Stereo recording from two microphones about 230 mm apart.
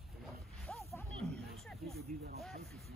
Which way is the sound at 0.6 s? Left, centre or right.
Centre.